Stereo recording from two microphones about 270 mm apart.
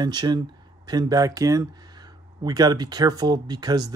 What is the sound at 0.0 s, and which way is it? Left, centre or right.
Speech, centre.